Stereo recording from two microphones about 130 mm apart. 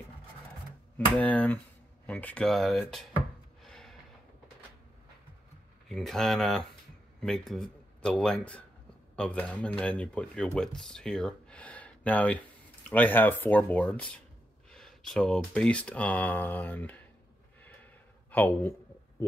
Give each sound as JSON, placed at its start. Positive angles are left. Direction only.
{"t": 0.9, "sound": "speech", "side_deg": 10}
{"t": 3.6, "sound": "gasp", "side_deg": 5}
{"t": 5.9, "sound": "speech", "side_deg": 5}
{"t": 18.3, "sound": "a sound", "side_deg": 15}